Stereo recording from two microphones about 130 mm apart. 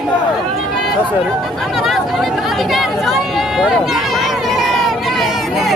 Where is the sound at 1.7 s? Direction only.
Centre (ahead or behind).